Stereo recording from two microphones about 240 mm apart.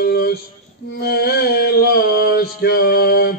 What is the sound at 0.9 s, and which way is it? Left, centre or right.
Mantra, left.